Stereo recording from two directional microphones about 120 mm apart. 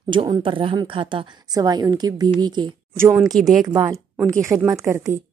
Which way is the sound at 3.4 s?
Centre (ahead or behind).